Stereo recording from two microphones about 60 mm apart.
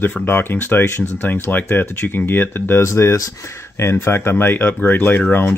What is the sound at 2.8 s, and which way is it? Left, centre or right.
Speech, left.